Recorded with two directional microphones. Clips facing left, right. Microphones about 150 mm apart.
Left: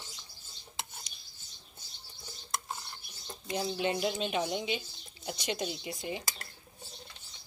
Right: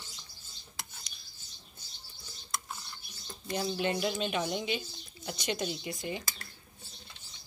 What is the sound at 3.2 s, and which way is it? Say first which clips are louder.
Speech: even; 20° left (ahead or behind).